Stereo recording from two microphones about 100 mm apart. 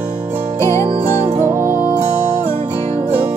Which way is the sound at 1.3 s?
25° right (ahead or behind).